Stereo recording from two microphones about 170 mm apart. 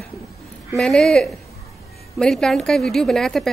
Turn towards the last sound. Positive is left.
turn(degrees=0)  # may be behind; listen again after turning